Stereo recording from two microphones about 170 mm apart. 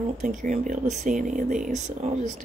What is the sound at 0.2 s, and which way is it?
Speech, 50° right (ahead or behind).